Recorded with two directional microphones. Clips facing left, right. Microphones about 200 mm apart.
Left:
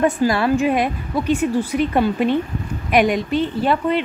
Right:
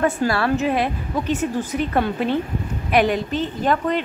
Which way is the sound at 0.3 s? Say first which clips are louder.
Left 3 dB; 15° left (ahead or behind).